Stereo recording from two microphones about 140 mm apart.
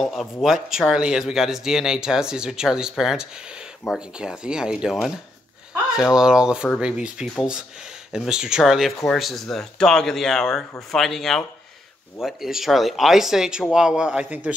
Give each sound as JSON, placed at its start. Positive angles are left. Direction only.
{"t": 0.0, "sound": "speech", "side_deg": 0}
{"t": 5.9, "sound": "speech", "side_deg": -5}